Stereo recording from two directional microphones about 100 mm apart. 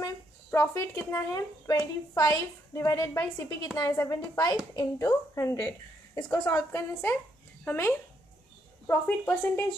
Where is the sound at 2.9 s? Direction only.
25° left (ahead or behind).